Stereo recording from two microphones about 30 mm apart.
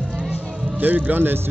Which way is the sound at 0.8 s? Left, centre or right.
Right.